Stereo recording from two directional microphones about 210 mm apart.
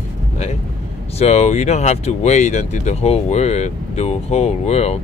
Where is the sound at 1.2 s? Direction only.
30° left (ahead or behind).